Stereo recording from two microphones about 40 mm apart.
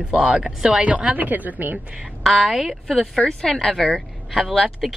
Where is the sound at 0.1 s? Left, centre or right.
Right.